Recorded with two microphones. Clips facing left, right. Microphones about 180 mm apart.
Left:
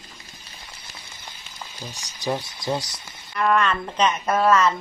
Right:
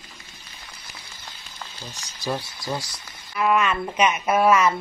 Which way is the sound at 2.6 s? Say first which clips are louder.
Left 3 dB; 20° left (ahead or behind).